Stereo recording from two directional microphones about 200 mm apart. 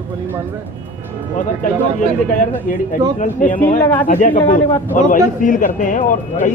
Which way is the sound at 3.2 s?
40° left (ahead or behind).